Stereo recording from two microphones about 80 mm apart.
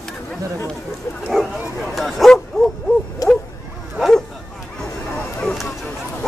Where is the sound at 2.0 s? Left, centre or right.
Centre.